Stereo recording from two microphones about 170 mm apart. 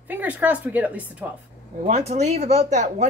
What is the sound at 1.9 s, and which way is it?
Speech, 40° right (ahead or behind).